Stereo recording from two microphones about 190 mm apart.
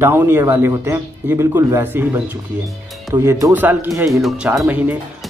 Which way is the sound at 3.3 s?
15° right (ahead or behind).